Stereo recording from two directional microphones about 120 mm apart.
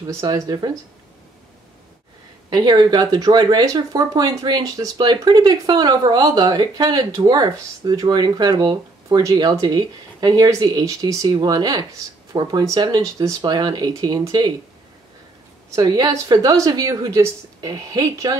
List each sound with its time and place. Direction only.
0.0 s speech: 25° right (ahead or behind)
2.5 s speech: 40° right (ahead or behind)
15.7 s speech: 30° right (ahead or behind)